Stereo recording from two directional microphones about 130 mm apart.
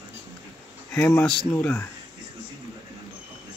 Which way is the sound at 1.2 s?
10° left (ahead or behind).